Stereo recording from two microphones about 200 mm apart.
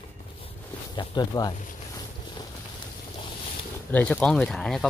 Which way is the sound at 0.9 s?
20° left (ahead or behind).